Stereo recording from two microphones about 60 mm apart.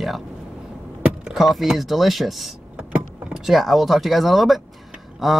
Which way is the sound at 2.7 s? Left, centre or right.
Centre.